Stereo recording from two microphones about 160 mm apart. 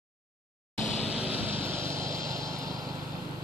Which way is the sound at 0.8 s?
45° left (ahead or behind).